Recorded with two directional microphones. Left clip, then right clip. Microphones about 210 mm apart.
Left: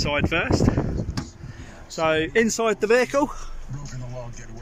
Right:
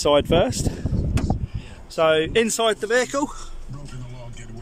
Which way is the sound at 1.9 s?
Centre (ahead or behind).